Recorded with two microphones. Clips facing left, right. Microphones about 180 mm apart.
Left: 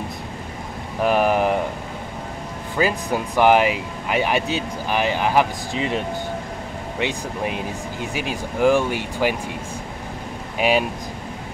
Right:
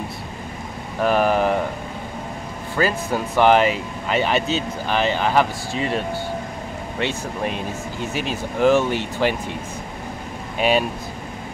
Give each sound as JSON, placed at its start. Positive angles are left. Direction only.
{"t": 1.0, "sound": "speech", "side_deg": 15}
{"t": 2.8, "sound": "speech", "side_deg": 15}
{"t": 10.6, "sound": "speech", "side_deg": 10}